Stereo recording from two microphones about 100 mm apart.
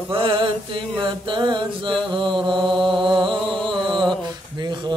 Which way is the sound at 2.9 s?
55° right (ahead or behind).